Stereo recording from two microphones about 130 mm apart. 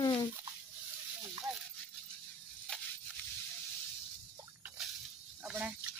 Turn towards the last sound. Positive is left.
turn(degrees=-10)  # may be behind; listen again after turning